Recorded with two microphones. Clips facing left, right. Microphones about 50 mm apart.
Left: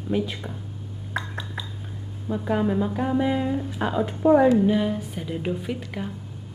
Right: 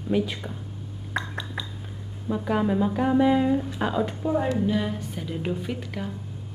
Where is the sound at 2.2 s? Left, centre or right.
Centre.